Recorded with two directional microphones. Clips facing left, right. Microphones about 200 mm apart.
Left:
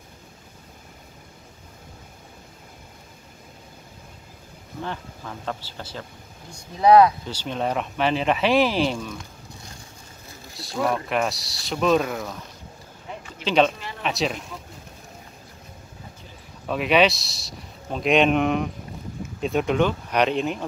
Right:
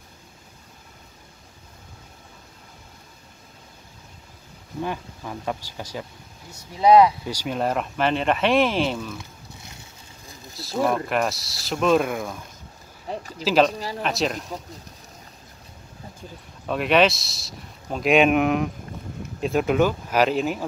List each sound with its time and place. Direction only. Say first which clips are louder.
4.8 s speech: right 2 dB; 10° right (ahead or behind)
10.5 s speech: right 2 dB; centre (ahead or behind)
13.1 s a sound: right 6 dB; 35° right (ahead or behind)
13.4 s speech: right 1 dB; 5° right (ahead or behind)
13.7 s speech: right 4 dB; 35° right (ahead or behind)
14.0 s speech: even; centre (ahead or behind)
16.6 s speech: even; centre (ahead or behind)